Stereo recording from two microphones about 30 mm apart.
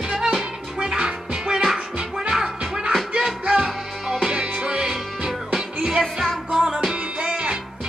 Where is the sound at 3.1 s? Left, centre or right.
Right.